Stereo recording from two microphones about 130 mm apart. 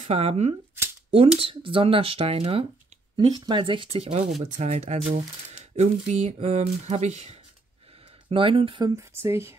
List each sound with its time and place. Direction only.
0.0 s speech: 50° right (ahead or behind)
1.4 s speech: 40° right (ahead or behind)
4.4 s speech: 60° right (ahead or behind)
8.3 s speech: 45° right (ahead or behind)
8.9 s speech: 20° right (ahead or behind)